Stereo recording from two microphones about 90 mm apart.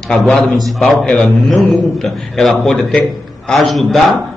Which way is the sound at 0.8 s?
10° left (ahead or behind).